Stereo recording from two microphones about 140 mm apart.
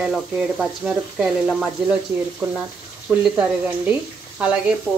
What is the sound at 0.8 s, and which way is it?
Frying, 5° right (ahead or behind).